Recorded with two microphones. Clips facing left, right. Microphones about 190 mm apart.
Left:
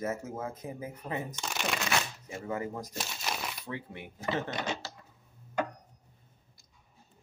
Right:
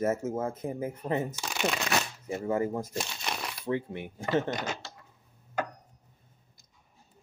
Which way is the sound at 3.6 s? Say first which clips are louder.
Right 9 dB; 25° right (ahead or behind).